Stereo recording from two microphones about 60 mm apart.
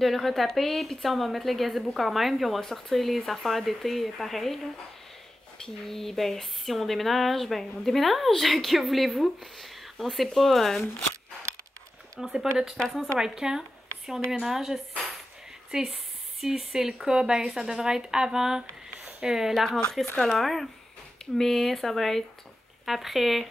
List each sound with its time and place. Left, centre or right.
0.0 s speech: centre
5.9 s speech: centre
12.2 s speech: centre
13.2 s speech: centre
19.0 s a sound: centre
19.5 s speech: centre